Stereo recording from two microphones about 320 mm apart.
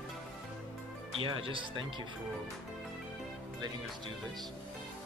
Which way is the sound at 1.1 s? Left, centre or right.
Centre.